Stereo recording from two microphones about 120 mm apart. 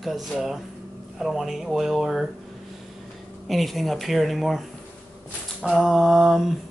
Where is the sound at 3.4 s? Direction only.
Centre (ahead or behind).